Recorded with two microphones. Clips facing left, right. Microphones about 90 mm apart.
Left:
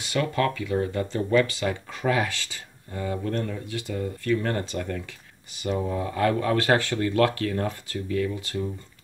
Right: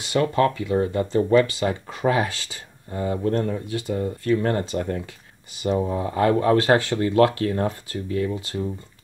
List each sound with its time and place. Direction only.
0.1 s speech: 30° right (ahead or behind)